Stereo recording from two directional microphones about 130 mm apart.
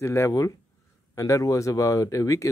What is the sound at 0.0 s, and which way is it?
Speech, 20° left (ahead or behind).